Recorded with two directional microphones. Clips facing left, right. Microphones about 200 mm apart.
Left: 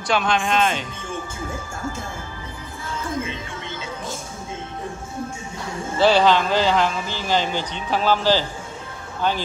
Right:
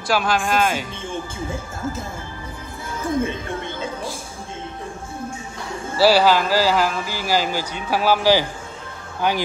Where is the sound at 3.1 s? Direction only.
55° right (ahead or behind).